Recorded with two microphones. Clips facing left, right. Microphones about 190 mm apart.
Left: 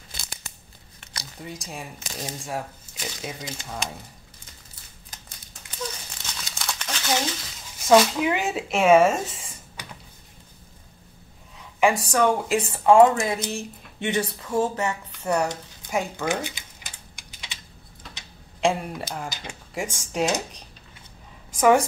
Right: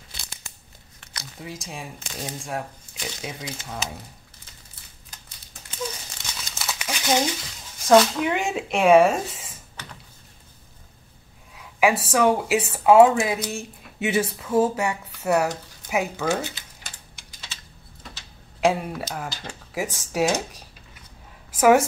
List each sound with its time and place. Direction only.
0.1 s tearing: 45° left (ahead or behind)
1.4 s speech: centre (ahead or behind)
6.5 s crumpling: 5° right (ahead or behind)
7.8 s speech: 5° left (ahead or behind)
9.8 s a sound: 15° left (ahead or behind)
11.8 s speech: 5° right (ahead or behind)
16.3 s typing: 15° left (ahead or behind)
18.0 s a sound: centre (ahead or behind)
18.6 s speech: 5° right (ahead or behind)
19.2 s speech: 15° left (ahead or behind)
19.7 s a woman's voice: 5° right (ahead or behind)